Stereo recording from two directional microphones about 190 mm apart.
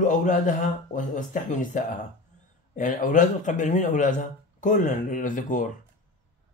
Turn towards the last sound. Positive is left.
turn(degrees=45)  # may be behind; listen again after turning